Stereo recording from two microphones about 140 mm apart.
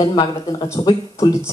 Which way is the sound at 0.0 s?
35° left (ahead or behind).